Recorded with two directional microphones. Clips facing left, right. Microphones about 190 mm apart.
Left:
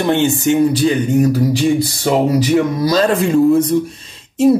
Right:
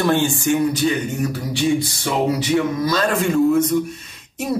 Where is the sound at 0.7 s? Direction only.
30° left (ahead or behind).